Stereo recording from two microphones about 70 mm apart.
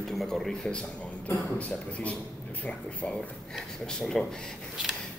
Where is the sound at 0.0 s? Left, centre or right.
Centre.